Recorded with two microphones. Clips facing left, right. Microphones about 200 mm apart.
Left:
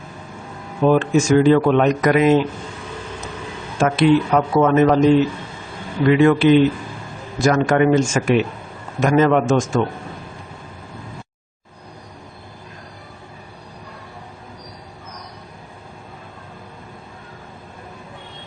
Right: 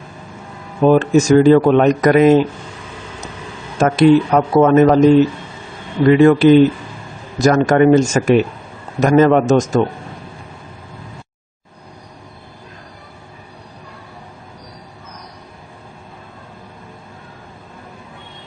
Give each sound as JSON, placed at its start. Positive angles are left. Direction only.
{"t": 0.8, "sound": "speech", "side_deg": -40}
{"t": 3.8, "sound": "speech", "side_deg": -40}
{"t": 6.0, "sound": "speech", "side_deg": -40}